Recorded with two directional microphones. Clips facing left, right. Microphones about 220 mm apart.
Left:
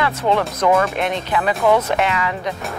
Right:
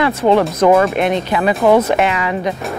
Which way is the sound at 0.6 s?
25° right (ahead or behind).